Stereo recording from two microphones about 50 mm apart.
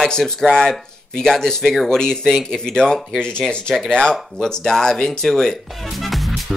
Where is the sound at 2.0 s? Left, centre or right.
Centre.